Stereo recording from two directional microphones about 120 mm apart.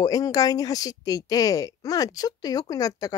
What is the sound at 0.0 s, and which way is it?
Speech, 30° left (ahead or behind).